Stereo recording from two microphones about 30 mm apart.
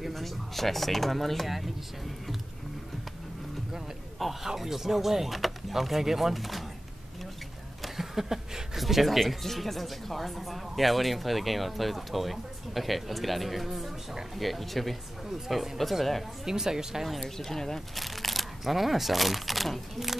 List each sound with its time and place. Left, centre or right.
0.1 s speech: centre
4.2 s a sound: centre
4.6 s speech: centre
7.8 s a sound: centre
8.7 s speech: centre
9.4 s speech: centre
16.4 s speech: centre
17.2 s speech: centre
17.9 s speech: centre